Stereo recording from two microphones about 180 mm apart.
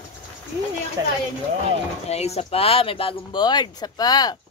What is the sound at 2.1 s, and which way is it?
Speech, 35° left (ahead or behind).